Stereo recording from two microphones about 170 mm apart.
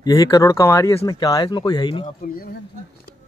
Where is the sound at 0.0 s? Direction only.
20° left (ahead or behind).